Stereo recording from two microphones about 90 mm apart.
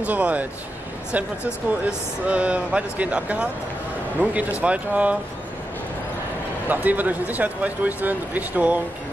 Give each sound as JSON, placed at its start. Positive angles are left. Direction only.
{"t": 0.0, "sound": "speech", "side_deg": -15}
{"t": 6.7, "sound": "speech", "side_deg": -20}